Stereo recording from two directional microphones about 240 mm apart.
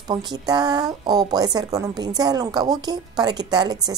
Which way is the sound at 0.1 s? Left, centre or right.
Centre.